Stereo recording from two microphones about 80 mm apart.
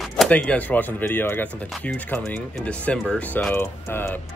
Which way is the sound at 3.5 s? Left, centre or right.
Left.